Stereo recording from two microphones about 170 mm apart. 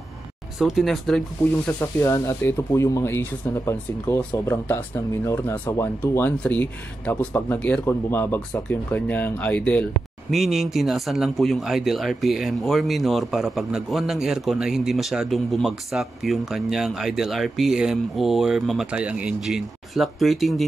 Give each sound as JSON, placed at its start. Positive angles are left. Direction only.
{"t": 0.6, "sound": "speech", "side_deg": 0}
{"t": 1.8, "sound": "speech", "side_deg": 15}